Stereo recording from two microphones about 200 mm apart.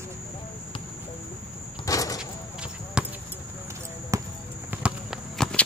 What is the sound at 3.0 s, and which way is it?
Basketball bounce, 5° right (ahead or behind).